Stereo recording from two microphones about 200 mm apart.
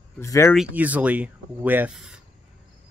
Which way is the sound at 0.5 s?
10° right (ahead or behind).